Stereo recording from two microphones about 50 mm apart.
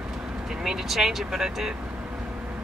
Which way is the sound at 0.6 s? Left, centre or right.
Centre.